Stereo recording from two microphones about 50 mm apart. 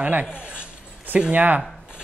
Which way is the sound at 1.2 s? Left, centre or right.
Right.